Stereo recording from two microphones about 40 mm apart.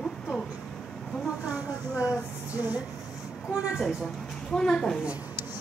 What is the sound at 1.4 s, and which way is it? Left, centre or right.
Speech, right.